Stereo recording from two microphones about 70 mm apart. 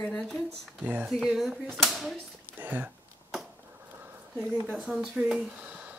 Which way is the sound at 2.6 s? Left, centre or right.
Right.